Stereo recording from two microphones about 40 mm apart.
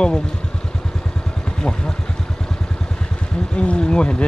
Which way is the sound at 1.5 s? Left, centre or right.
Centre.